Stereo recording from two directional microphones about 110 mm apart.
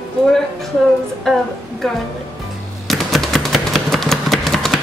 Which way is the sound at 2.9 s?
Centre (ahead or behind).